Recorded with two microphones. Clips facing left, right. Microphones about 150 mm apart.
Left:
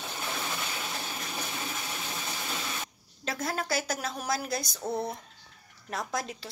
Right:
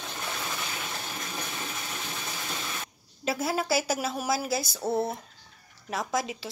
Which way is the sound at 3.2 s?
5° right (ahead or behind).